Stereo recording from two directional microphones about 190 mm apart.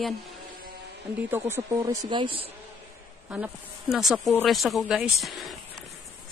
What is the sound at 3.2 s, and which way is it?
Speech, 5° right (ahead or behind).